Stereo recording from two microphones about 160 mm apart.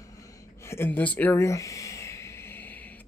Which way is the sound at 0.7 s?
10° left (ahead or behind).